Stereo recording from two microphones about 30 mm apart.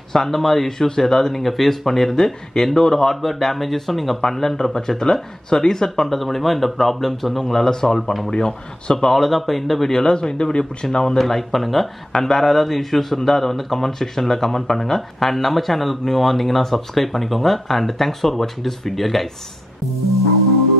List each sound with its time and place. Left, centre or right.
0.1 s speech: centre
6.0 s speech: centre
7.4 s speech: centre
8.3 s speech: left
9.1 s speech: centre
10.0 s speech: left
11.1 s speech: centre
12.1 s speech: centre